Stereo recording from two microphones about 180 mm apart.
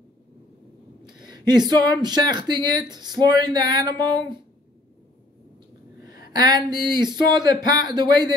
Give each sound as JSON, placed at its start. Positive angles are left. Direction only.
{"t": 1.0, "sound": "speech", "side_deg": -25}
{"t": 5.9, "sound": "speech", "side_deg": -20}